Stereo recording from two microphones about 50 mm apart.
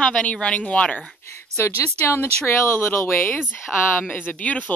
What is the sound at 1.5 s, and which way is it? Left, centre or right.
Speech, left.